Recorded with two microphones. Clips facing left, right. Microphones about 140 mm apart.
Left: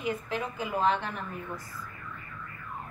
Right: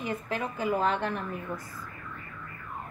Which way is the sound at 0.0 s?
45° right (ahead or behind).